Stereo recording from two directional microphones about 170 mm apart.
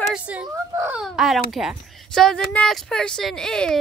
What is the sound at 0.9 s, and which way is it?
Speech, 5° right (ahead or behind).